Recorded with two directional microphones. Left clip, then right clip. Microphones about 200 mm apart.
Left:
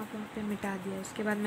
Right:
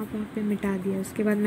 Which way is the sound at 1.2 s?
20° right (ahead or behind).